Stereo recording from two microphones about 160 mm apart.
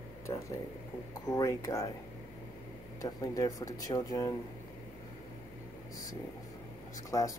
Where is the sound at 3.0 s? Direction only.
20° left (ahead or behind).